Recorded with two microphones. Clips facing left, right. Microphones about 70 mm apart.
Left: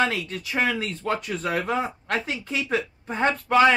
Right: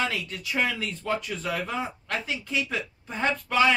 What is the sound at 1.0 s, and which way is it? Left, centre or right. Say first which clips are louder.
Speech: left 2 dB; left.